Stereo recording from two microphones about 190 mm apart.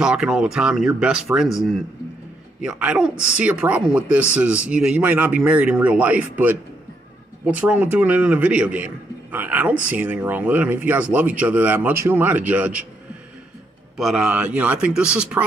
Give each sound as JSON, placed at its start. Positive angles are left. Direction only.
{"t": 0.0, "sound": "a man's voice", "side_deg": -5}
{"t": 13.9, "sound": "speech", "side_deg": -5}